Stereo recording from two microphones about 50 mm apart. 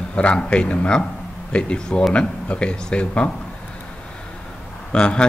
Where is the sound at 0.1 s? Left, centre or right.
Left.